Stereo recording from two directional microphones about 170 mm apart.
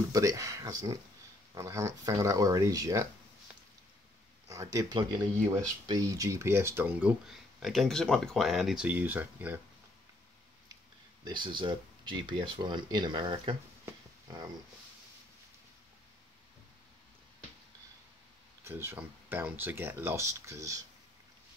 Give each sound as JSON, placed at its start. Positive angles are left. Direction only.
{"t": 0.1, "sound": "speech", "side_deg": -20}
{"t": 4.5, "sound": "speech", "side_deg": -20}
{"t": 11.2, "sound": "speech", "side_deg": -30}
{"t": 18.6, "sound": "speech", "side_deg": -15}